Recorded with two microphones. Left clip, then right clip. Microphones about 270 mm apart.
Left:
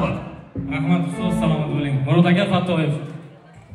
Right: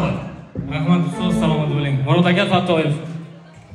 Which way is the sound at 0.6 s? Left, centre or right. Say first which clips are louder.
Right 2 dB; centre.